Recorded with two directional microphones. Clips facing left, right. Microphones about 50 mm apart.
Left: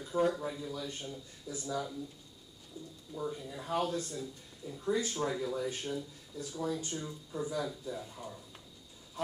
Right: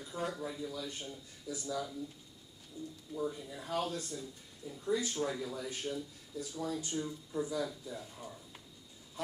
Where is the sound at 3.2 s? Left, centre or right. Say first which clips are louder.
Even; left.